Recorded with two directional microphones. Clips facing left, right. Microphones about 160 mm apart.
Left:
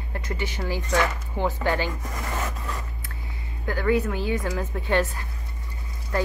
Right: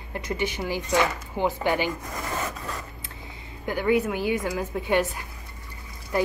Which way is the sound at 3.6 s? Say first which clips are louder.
Even; 15° right (ahead or behind).